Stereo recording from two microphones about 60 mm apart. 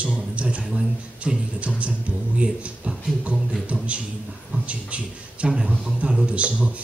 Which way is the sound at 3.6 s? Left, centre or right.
Right.